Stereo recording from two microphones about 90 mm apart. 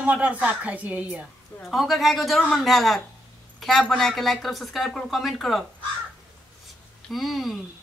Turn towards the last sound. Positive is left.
turn(degrees=0)  # may be behind; listen again after turning